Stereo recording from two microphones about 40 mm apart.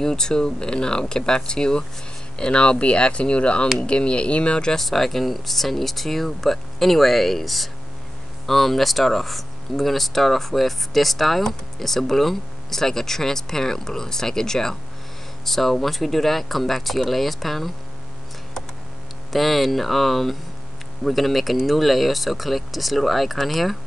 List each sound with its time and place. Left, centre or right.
0.0 s speech: centre
4.7 s speech: centre
19.3 s speech: centre